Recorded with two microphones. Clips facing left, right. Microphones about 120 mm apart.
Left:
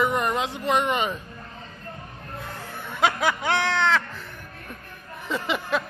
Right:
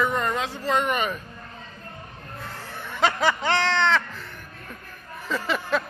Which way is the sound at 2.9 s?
10° left (ahead or behind).